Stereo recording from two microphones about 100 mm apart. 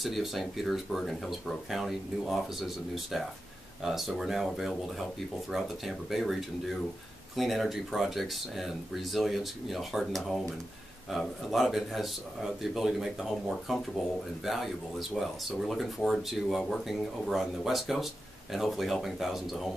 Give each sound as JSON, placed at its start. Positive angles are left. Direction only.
{"t": 0.0, "sound": "speech", "side_deg": 0}